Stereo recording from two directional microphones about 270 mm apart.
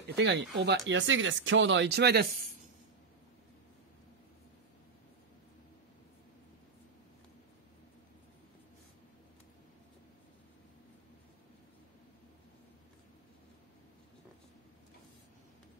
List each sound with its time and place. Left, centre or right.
0.0 s speech: right